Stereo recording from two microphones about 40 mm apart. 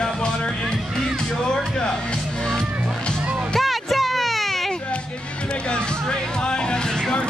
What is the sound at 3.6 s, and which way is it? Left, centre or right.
Music, centre.